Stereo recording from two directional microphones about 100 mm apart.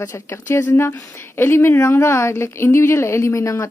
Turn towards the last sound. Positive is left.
turn(degrees=30)  # may be behind; listen again after turning